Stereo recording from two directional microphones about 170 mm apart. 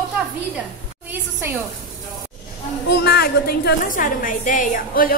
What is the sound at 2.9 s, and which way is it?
A woman's voice, 70° left (ahead or behind).